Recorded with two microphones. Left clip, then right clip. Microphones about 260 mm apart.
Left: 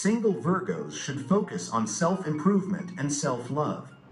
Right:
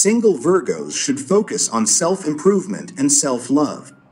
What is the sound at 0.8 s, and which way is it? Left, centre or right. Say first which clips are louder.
A man's voice: right 12 dB; right.